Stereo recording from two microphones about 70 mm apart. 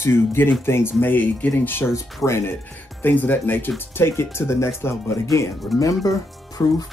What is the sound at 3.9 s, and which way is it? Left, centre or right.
Speech, left.